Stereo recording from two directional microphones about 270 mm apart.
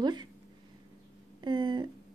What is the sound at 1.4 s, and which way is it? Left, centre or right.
Speech, centre.